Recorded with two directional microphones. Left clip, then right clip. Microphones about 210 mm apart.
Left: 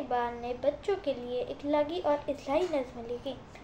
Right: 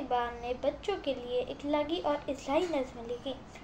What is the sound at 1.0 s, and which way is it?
Speech, 40° left (ahead or behind).